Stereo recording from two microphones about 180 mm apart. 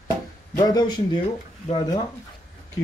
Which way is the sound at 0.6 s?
25° left (ahead or behind).